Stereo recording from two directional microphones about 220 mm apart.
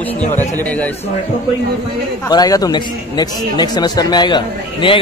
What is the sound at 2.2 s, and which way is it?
Speech, 15° left (ahead or behind).